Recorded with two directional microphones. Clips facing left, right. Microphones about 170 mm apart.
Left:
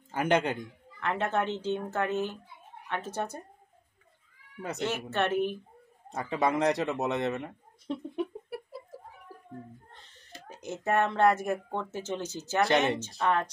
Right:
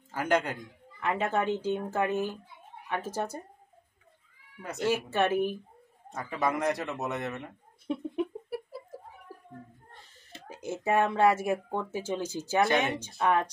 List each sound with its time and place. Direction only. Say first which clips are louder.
0.1 s speech: left 1 dB; 20° left (ahead or behind)
0.9 s speech: right 1 dB; 10° right (ahead or behind)
4.6 s speech: left 2 dB; 25° left (ahead or behind)
4.8 s speech: right 3 dB; 10° right (ahead or behind)
6.1 s speech: left 2 dB; 25° left (ahead or behind)
7.8 s a sound: right 2 dB; 5° right (ahead or behind)
10.5 s speech: right 1 dB; 10° right (ahead or behind)